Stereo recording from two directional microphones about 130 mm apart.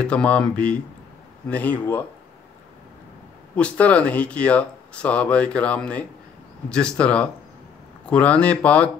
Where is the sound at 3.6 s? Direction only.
10° left (ahead or behind).